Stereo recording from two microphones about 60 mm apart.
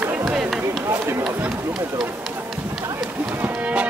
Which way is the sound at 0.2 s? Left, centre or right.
Centre.